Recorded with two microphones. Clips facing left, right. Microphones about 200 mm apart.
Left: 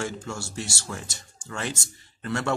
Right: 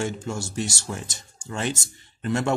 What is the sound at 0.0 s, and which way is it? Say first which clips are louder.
Speech: right 3 dB; 20° right (ahead or behind).